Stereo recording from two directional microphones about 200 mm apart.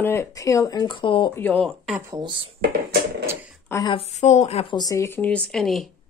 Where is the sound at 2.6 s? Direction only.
50° right (ahead or behind).